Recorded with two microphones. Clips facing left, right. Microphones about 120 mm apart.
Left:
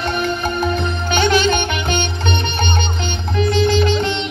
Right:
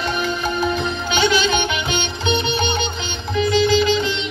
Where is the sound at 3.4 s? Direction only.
50° left (ahead or behind).